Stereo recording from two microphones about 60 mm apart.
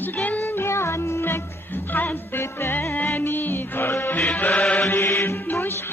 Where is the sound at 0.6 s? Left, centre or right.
Left.